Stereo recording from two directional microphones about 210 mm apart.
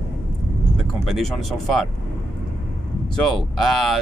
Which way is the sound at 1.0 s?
Centre (ahead or behind).